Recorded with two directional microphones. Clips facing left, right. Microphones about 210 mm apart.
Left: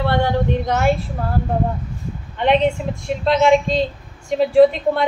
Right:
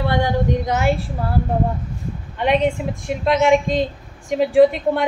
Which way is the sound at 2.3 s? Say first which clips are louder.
Left 1 dB; 10° right (ahead or behind).